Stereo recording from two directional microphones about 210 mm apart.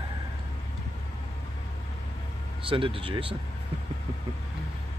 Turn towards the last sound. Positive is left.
turn(degrees=-25)  # may be behind; listen again after turning